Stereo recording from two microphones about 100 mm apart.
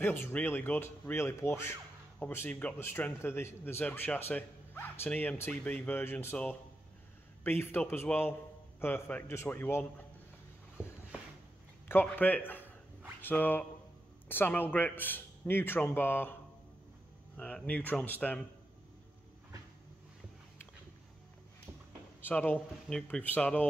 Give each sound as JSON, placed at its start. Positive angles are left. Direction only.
{"t": 0.0, "sound": "speech", "side_deg": 20}
{"t": 7.4, "sound": "speech", "side_deg": 25}
{"t": 11.9, "sound": "speech", "side_deg": 20}
{"t": 17.4, "sound": "speech", "side_deg": 10}
{"t": 22.2, "sound": "speech", "side_deg": 15}